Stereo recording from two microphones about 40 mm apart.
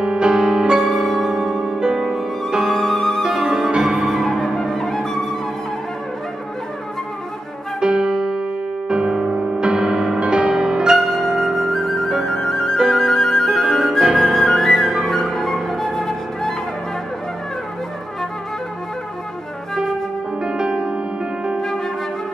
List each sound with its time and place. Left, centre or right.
0.0 s music: centre
0.7 s music: centre
1.8 s music: centre
2.0 s music: centre
3.7 s music: centre
4.0 s music: centre
7.8 s music: right
11.0 s flute: centre
12.7 s flute: centre
20.4 s music: right